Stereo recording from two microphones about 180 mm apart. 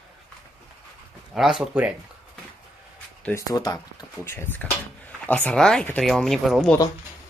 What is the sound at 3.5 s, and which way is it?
Speech, 20° left (ahead or behind).